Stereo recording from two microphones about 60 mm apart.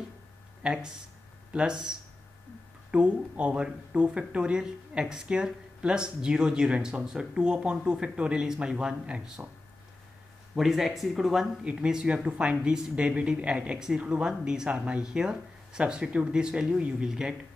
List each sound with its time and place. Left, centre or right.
0.6 s speech: centre
10.5 s speech: centre
11.6 s speech: centre